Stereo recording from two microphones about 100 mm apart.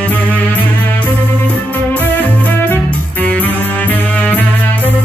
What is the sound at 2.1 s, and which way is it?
Music, 15° left (ahead or behind).